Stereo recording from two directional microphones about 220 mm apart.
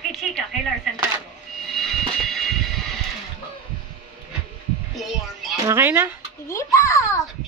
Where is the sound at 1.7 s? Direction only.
Centre (ahead or behind).